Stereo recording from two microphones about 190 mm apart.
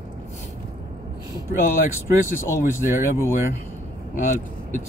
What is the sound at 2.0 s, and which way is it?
Speech, 15° left (ahead or behind).